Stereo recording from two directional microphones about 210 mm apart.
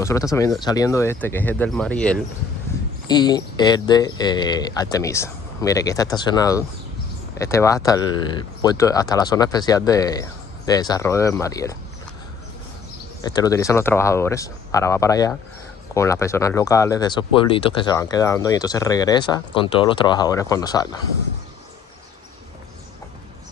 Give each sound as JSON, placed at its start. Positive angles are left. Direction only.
{"t": 0.0, "sound": "speech", "side_deg": 15}
{"t": 3.1, "sound": "speech", "side_deg": 20}
{"t": 13.2, "sound": "speech", "side_deg": 20}